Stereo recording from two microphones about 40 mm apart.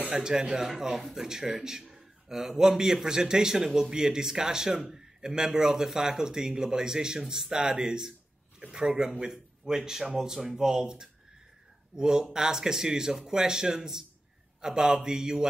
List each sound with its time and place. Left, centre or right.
0.1 s speech: centre
9.3 s speech: centre